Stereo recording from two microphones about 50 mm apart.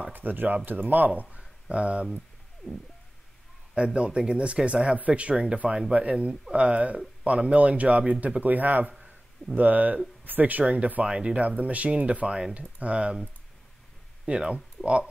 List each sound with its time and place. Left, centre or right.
0.1 s speech: right
1.4 s a sound: right
2.0 s bird: centre
3.7 s speech: right
14.2 s speech: centre
14.8 s a sound: left